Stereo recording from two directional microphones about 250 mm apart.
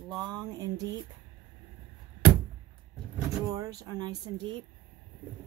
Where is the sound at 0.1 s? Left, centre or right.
Centre.